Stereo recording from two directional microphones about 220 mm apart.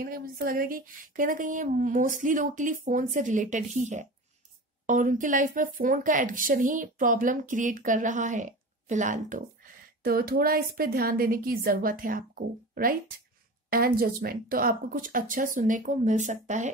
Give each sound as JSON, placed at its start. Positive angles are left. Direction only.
{"t": 0.0, "sound": "speech", "side_deg": -40}